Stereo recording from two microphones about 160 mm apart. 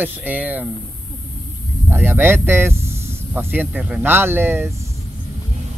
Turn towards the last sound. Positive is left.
turn(degrees=-15)  # may be behind; listen again after turning